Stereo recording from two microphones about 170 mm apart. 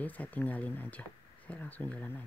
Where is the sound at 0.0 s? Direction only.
10° left (ahead or behind).